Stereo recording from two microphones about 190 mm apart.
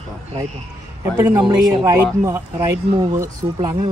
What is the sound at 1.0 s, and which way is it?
A man's voice, 15° right (ahead or behind).